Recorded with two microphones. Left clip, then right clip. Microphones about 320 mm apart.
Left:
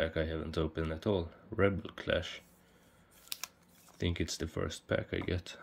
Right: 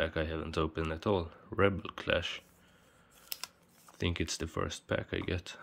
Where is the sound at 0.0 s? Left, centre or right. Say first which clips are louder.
Even; centre.